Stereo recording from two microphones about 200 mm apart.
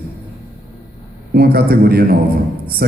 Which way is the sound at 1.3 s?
50° right (ahead or behind).